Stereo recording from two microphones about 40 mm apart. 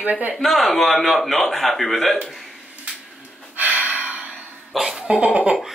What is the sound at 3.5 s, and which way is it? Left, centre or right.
Gasp, right.